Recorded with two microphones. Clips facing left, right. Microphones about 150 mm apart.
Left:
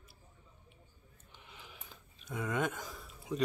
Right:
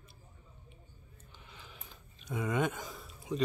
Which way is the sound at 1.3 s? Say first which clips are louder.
Even; 20° left (ahead or behind).